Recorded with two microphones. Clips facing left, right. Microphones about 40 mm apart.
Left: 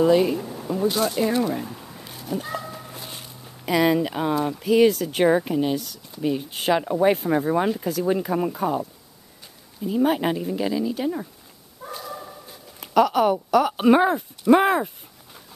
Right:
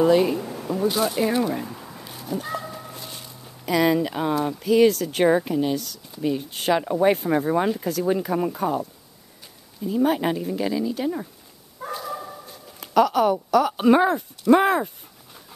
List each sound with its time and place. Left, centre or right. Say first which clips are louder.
0.0 s speech: even; centre
2.3 s speech: even; centre
3.6 s speech: even; centre
9.8 s speech: even; centre
11.8 s bow-wow: right 4 dB; right
12.8 s speech: even; centre